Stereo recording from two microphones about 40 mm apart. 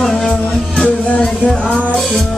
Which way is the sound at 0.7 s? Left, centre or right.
Left.